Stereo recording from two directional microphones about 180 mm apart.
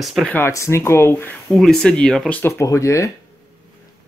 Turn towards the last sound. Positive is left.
turn(degrees=15)  # may be behind; listen again after turning